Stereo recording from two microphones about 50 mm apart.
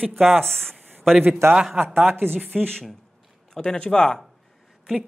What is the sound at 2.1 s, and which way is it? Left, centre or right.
Speech, right.